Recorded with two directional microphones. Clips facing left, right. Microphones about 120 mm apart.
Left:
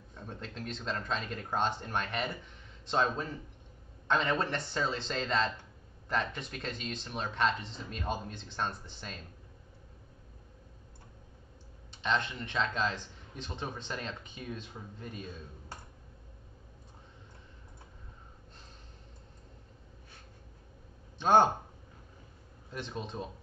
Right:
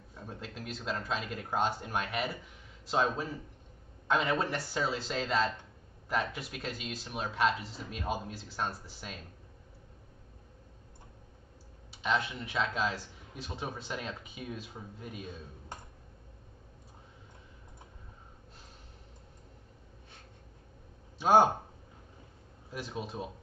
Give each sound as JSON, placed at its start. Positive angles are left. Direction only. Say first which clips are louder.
{"t": 0.1, "sound": "a man's voice", "louder": "even", "side_deg": -5}
{"t": 11.9, "sound": "a man's voice", "louder": "even", "side_deg": -5}
{"t": 15.7, "sound": "tick-tock", "louder": "right 2 dB", "side_deg": -20}
{"t": 21.2, "sound": "speech", "louder": "right 1 dB", "side_deg": -10}
{"t": 22.7, "sound": "a man's voice", "louder": "right 1 dB", "side_deg": -5}